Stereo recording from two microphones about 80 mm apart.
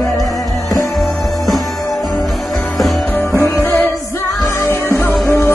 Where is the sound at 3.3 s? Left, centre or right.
Left.